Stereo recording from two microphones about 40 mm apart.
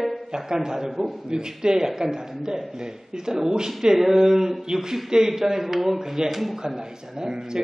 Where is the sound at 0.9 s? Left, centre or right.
Centre.